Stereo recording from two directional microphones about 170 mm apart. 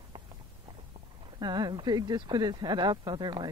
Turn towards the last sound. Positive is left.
turn(degrees=-25)  # may be behind; listen again after turning